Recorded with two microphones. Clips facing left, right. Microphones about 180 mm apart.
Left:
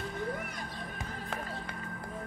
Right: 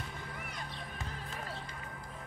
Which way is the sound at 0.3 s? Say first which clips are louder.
Left 9 dB; 45° left (ahead or behind).